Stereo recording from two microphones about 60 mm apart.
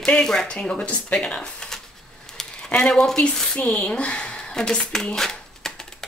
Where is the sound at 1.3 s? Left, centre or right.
Centre.